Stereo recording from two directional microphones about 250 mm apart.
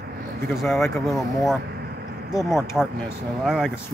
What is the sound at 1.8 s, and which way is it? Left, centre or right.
Vehicle, right.